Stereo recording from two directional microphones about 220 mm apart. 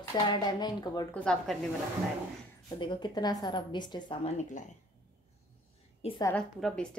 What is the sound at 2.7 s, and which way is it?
A woman's voice, 20° left (ahead or behind).